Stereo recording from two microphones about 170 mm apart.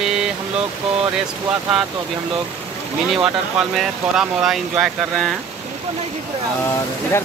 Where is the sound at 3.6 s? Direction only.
Centre (ahead or behind).